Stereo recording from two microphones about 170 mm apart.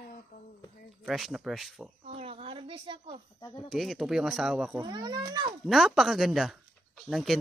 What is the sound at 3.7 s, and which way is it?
Speech, centre (ahead or behind).